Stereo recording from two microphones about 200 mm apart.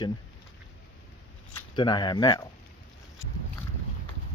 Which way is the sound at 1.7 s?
20° left (ahead or behind).